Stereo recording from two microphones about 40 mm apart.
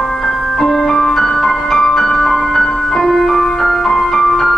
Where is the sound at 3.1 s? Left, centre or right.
Centre.